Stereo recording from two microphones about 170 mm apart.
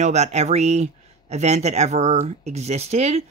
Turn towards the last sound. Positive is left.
turn(degrees=-40)  # may be behind; listen again after turning